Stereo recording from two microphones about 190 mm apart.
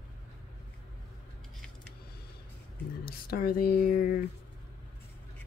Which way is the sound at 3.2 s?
50° left (ahead or behind).